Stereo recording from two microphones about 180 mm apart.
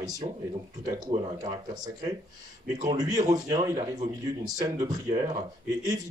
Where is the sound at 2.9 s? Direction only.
20° right (ahead or behind).